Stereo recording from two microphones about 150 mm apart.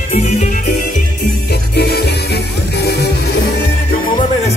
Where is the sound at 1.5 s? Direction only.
90° left.